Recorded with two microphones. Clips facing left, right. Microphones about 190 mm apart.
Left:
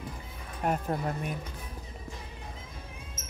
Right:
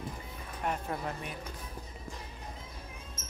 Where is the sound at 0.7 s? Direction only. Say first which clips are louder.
Left 5 dB; 45° left (ahead or behind).